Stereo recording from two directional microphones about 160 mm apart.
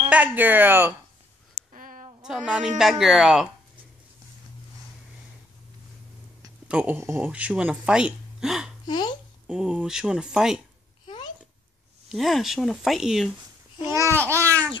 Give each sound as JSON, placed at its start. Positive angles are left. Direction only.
{"t": 0.1, "sound": "speech", "side_deg": -10}
{"t": 1.7, "sound": "a sound", "side_deg": -55}
{"t": 2.2, "sound": "speech", "side_deg": -5}
{"t": 6.7, "sound": "speech", "side_deg": -10}
{"t": 8.8, "sound": "a child's voice", "side_deg": 30}
{"t": 9.5, "sound": "speech", "side_deg": -5}
{"t": 12.1, "sound": "speech", "side_deg": 0}
{"t": 13.9, "sound": "speech", "side_deg": -15}
{"t": 14.3, "sound": "a child's voice", "side_deg": 15}